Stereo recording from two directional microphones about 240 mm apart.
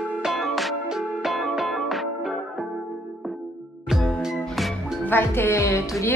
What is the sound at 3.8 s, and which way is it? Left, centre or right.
Music, centre.